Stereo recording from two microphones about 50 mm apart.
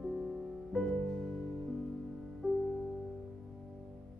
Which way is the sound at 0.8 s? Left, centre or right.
Centre.